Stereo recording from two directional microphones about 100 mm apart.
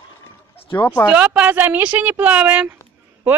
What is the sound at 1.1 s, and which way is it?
Speech, 10° right (ahead or behind).